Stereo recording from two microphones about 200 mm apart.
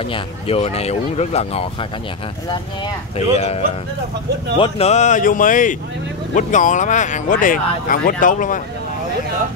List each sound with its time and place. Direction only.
0.0 s speech: 30° left (ahead or behind)